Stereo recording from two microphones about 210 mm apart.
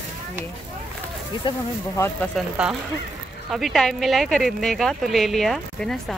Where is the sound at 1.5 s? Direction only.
15° left (ahead or behind).